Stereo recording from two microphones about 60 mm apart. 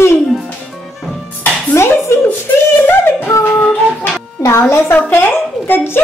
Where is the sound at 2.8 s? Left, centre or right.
Left.